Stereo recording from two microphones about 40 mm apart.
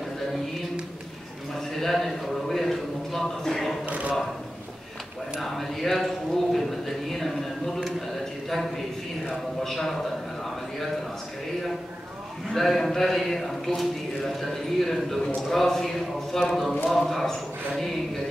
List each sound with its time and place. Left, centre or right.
1.5 s a man's voice: centre
3.8 s a man's voice: right
5.4 s a sound: centre
12.5 s a man's voice: centre